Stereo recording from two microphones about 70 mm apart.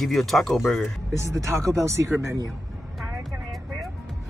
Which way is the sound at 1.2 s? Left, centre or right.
Right.